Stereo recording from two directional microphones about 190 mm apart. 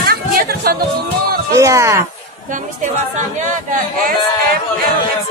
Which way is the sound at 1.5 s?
15° right (ahead or behind).